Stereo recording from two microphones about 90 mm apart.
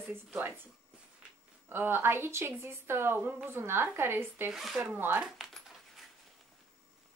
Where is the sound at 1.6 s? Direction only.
25° right (ahead or behind).